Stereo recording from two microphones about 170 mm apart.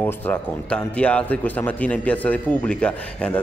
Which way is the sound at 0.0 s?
10° left (ahead or behind).